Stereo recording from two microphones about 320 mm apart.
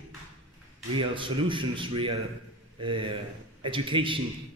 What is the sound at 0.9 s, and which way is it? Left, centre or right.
A man's voice, centre.